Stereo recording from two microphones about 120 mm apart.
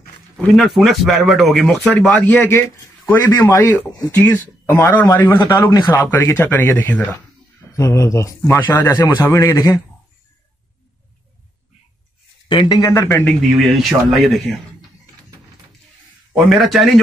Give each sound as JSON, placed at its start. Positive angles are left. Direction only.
{"t": 0.6, "sound": "speech", "side_deg": 0}
{"t": 5.0, "sound": "a man's voice", "side_deg": 30}
{"t": 7.7, "sound": "a man's voice", "side_deg": 25}
{"t": 12.4, "sound": "a man's voice", "side_deg": 40}
{"t": 13.4, "sound": "speech", "side_deg": 0}
{"t": 16.4, "sound": "speech", "side_deg": 0}